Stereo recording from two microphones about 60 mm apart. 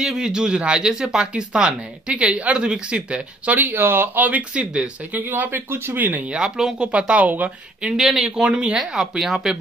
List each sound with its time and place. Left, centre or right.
0.0 s speech: centre
3.5 s speech: right
6.3 s speech: centre; by 7.5 s right
7.8 s speech: centre
8.5 s speech: centre
8.7 s speech: centre